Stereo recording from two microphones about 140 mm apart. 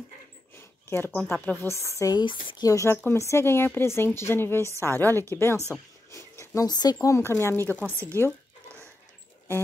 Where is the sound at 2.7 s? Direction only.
20° left (ahead or behind).